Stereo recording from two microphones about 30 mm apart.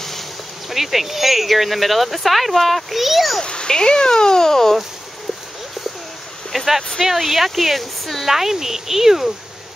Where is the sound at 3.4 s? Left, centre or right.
Left.